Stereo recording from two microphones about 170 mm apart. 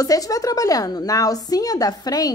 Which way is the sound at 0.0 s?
20° left (ahead or behind).